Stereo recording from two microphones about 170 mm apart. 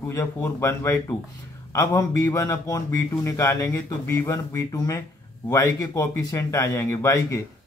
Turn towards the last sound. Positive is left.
turn(degrees=20)  # may be behind; listen again after turning